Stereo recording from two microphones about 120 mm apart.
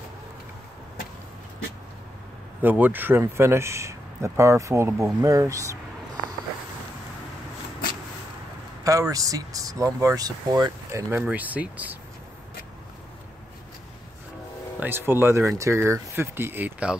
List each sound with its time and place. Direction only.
2.6 s speech: 15° right (ahead or behind)
8.8 s speech: 30° right (ahead or behind); by 12.0 s 10° right (ahead or behind)
14.8 s speech: 20° right (ahead or behind)